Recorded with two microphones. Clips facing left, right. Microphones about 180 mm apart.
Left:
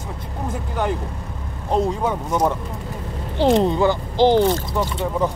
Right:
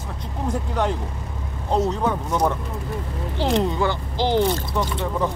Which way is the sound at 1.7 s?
10° left (ahead or behind).